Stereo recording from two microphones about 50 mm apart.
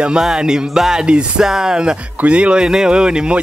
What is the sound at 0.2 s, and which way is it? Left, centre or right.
A man's voice, centre.